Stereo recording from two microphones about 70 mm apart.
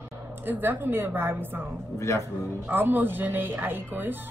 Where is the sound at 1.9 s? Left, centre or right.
Left.